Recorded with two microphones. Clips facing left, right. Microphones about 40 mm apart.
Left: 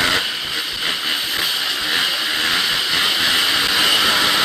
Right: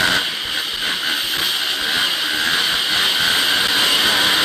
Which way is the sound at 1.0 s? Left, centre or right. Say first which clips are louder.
Even; right.